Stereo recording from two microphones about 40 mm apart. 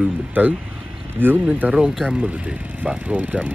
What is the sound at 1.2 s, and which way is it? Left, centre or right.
Speech, right.